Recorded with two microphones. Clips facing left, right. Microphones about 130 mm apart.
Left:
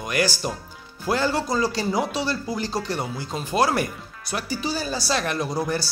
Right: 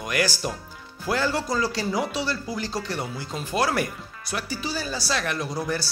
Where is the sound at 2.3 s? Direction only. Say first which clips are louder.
Left 2 dB; 25° left (ahead or behind).